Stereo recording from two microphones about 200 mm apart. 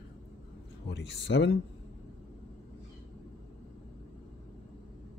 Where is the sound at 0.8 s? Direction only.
60° left (ahead or behind).